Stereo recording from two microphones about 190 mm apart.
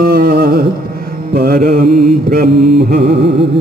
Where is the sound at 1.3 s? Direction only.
50° right (ahead or behind).